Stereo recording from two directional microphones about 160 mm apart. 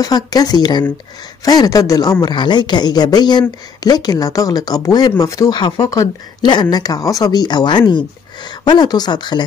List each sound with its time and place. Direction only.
0.0 s a woman's voice: 25° left (ahead or behind)